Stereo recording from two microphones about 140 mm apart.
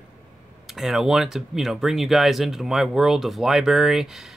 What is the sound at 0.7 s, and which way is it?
Speech, centre (ahead or behind).